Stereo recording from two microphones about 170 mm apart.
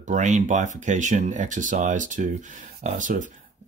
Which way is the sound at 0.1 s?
45° right (ahead or behind).